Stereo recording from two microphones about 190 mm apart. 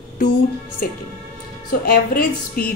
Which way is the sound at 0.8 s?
55° left (ahead or behind).